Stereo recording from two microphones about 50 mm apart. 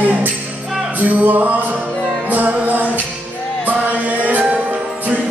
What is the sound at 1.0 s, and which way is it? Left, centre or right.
Music, right.